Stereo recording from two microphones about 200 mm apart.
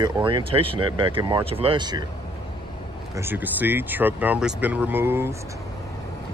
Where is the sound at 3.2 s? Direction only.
10° right (ahead or behind).